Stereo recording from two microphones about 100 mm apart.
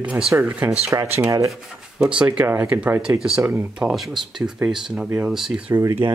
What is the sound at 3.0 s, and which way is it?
Speech, 5° right (ahead or behind).